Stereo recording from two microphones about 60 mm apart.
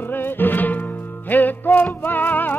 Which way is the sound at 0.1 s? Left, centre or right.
Left.